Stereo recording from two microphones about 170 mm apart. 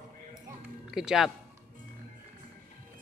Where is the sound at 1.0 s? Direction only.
5° right (ahead or behind).